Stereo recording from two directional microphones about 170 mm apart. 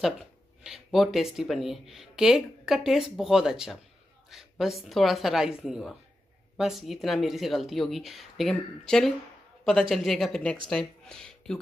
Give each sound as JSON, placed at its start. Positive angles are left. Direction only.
{"t": 0.0, "sound": "speech", "side_deg": 0}